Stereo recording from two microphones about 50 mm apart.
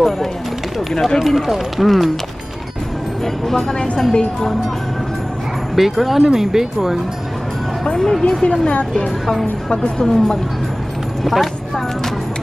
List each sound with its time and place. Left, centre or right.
0.7 s speech: centre
3.4 s speech: centre
5.8 s speech: centre
7.8 s speech: centre
9.2 s speech: centre
9.7 s speech: centre
11.2 s a sound: centre